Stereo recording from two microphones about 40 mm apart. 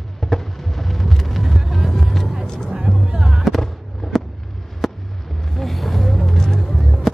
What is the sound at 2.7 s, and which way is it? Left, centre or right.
Music, centre.